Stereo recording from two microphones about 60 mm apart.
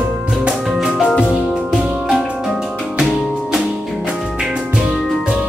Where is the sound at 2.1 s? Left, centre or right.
Centre.